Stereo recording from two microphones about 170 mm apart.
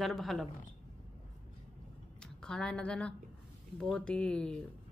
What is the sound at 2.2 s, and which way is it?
A woman's voice, 5° left (ahead or behind).